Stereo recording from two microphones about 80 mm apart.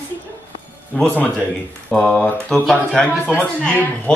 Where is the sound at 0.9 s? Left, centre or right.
Left.